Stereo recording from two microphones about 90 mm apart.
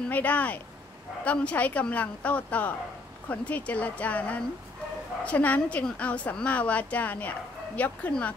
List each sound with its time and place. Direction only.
0.1 s a woman's voice: 15° left (ahead or behind)